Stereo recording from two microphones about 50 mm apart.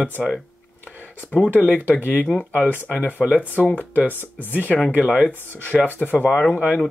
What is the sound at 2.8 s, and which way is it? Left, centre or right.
Speech, left.